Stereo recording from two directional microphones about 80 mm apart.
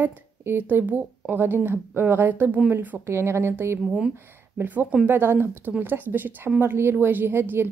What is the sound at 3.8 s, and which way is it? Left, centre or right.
Speech, centre.